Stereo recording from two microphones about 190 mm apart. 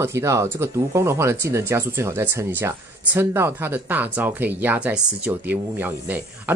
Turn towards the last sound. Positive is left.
turn(degrees=-10)  # may be behind; listen again after turning